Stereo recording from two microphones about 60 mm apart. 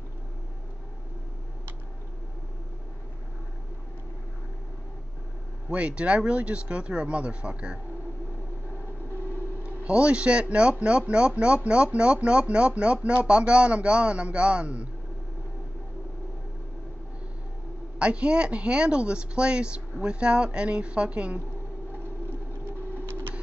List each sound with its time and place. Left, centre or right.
5.7 s speech: centre
9.1 s a sound: right
9.6 s speech: right
17.9 s speech: centre
22.7 s printer: right